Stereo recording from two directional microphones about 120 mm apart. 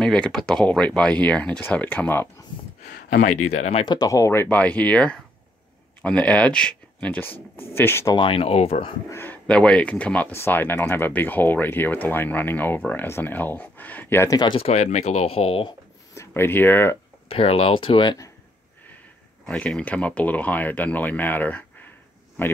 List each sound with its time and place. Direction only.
0.0 s speech: 5° left (ahead or behind)
2.8 s speech: 75° left (ahead or behind)
3.8 s speech: 35° left (ahead or behind)
8.1 s speech: 45° left (ahead or behind)
9.1 s speech: 15° left (ahead or behind)
14.3 s speech: 40° left (ahead or behind)
14.6 s speech: 65° left (ahead or behind)
16.2 s speech: 20° left (ahead or behind)
17.3 s speech: 50° left (ahead or behind)
19.4 s speech: 5° left (ahead or behind)